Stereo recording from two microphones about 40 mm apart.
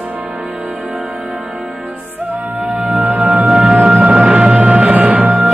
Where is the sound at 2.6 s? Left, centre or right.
Right.